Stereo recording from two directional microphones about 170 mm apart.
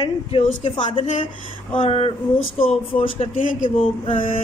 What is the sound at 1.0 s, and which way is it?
A woman's voice, 45° left (ahead or behind).